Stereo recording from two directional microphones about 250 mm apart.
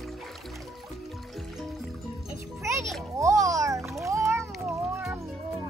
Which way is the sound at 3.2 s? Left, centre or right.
Centre.